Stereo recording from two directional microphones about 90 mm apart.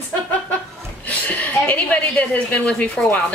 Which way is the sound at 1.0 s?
15° left (ahead or behind).